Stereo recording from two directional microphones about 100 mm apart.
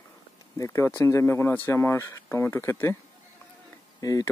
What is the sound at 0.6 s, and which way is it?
Speech, 30° left (ahead or behind).